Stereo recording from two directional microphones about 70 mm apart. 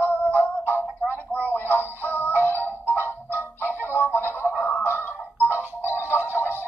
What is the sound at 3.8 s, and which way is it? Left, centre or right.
Music, left.